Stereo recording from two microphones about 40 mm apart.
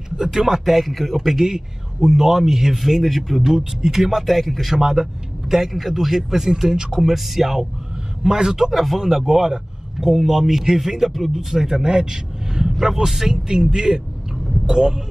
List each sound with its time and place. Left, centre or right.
0.2 s speech: centre
8.2 s speech: centre
13.5 s speech: centre